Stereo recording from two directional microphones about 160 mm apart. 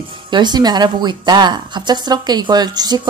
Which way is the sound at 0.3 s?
25° right (ahead or behind).